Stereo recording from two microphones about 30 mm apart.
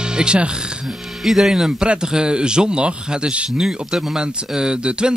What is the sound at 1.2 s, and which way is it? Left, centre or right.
Speech, centre.